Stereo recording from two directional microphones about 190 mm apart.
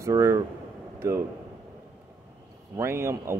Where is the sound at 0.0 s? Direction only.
15° right (ahead or behind).